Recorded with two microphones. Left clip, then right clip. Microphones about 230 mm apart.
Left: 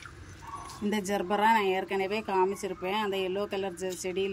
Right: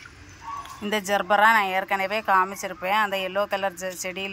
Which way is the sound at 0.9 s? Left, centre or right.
Centre.